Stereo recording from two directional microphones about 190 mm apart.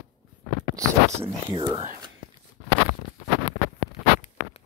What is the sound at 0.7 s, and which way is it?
Speech, 20° right (ahead or behind).